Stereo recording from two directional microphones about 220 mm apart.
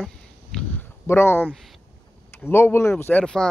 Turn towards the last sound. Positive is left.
turn(degrees=5)  # may be behind; listen again after turning